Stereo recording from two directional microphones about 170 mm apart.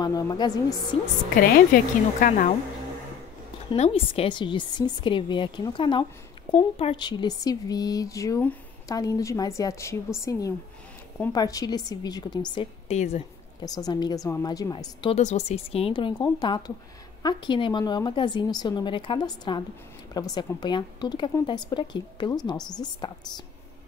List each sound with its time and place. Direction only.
0.0 s speech: 25° left (ahead or behind)
1.3 s speech: 55° left (ahead or behind)
3.7 s speech: 35° left (ahead or behind)
12.9 s speech: 40° left (ahead or behind)
13.6 s speech: 20° left (ahead or behind)
15.1 s speech: 40° left (ahead or behind)